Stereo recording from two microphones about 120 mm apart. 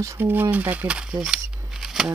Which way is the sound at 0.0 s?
20° right (ahead or behind).